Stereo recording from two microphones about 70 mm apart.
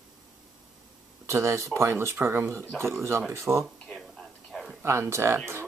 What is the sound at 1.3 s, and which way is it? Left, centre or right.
Speech, right.